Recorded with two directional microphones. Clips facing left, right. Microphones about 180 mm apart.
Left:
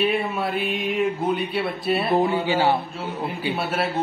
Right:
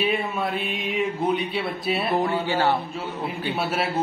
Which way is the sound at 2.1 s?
15° left (ahead or behind).